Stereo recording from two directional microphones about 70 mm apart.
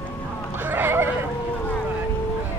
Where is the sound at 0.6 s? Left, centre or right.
Right.